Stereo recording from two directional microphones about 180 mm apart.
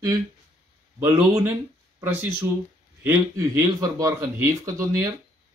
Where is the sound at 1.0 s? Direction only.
15° right (ahead or behind).